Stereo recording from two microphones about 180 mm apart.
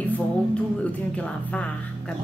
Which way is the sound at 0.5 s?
5° left (ahead or behind).